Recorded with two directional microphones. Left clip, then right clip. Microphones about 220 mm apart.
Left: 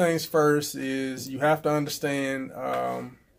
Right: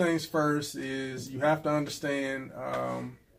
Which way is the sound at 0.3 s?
55° left (ahead or behind).